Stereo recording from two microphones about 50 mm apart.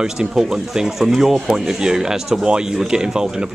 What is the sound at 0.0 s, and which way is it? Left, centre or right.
Speech, centre.